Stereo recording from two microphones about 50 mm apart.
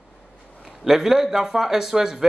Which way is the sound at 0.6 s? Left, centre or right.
Centre.